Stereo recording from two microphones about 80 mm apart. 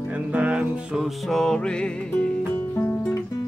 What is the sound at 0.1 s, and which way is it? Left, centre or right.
Music, centre.